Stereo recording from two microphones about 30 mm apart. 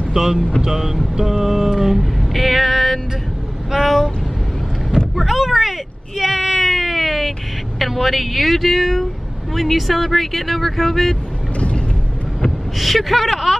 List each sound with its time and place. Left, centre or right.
0.1 s speech: centre
0.6 s a sound: centre
2.0 s music: centre
3.7 s vehicle: centre
4.9 s a sound: centre
7.8 s speech: centre
12.4 s speech: centre